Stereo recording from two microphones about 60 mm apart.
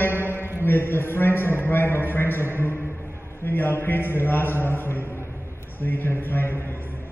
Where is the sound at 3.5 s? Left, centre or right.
Left.